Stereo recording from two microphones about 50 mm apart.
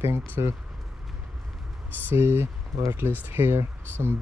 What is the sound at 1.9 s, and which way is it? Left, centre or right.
Speech, right.